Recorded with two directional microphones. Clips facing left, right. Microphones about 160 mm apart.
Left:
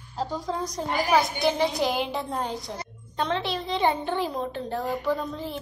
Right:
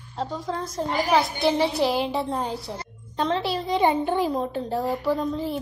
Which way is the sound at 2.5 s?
30° right (ahead or behind).